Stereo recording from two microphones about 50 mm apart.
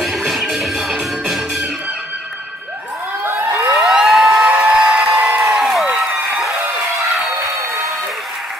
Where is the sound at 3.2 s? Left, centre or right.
Right.